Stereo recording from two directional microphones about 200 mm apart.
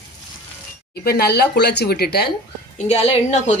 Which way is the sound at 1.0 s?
50° left (ahead or behind).